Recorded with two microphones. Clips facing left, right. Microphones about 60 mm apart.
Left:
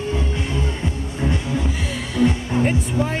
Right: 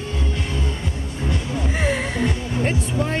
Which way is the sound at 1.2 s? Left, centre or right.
Centre.